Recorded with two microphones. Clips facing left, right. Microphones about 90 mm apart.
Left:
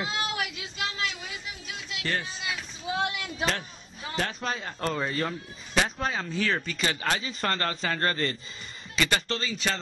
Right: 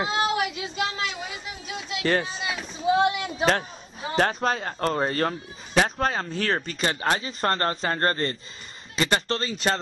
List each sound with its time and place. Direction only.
0.0 s speech: 30° right (ahead or behind)
2.2 s a sound: 25° right (ahead or behind)
4.2 s speech: 45° right (ahead or behind)